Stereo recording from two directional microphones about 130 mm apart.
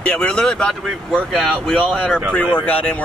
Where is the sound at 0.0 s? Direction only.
10° left (ahead or behind).